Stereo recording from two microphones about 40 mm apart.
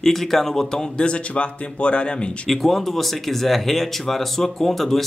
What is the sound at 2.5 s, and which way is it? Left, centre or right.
A man's voice, centre.